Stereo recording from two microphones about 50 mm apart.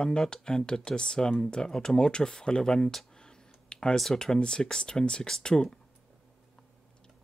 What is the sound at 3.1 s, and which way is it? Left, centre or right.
Clicking, centre.